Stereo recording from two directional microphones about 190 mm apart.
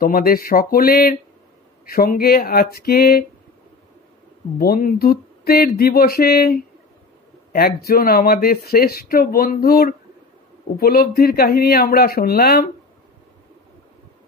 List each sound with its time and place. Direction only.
0.0 s speech: 50° left (ahead or behind)
4.6 s speech: 50° left (ahead or behind)